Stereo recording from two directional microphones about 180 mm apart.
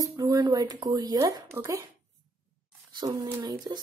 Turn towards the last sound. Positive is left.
turn(degrees=-25)  # may be behind; listen again after turning